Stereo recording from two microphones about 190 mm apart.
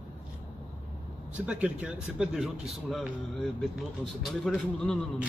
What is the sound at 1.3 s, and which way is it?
A man's voice, 5° right (ahead or behind).